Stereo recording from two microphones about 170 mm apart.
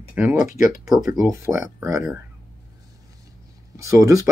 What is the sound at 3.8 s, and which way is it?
Speech, 20° right (ahead or behind).